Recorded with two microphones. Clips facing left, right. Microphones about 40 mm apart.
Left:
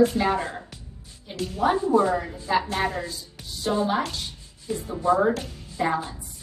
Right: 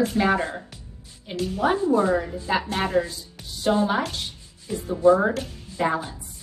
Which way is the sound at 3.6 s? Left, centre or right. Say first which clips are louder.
Right 2 dB; right.